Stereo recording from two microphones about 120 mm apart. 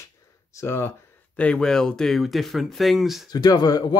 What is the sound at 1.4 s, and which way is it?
Speech, 10° left (ahead or behind).